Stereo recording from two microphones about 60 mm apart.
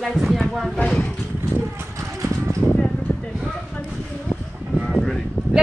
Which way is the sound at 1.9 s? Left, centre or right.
Right.